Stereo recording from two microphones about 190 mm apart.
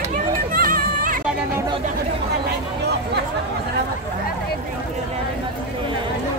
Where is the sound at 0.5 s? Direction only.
50° right (ahead or behind).